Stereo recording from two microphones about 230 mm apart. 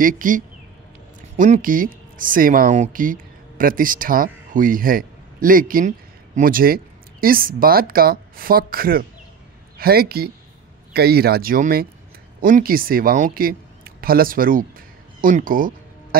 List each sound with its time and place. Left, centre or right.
0.0 s speech: right